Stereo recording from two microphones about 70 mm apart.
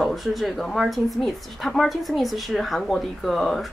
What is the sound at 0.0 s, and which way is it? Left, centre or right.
A woman's voice, centre.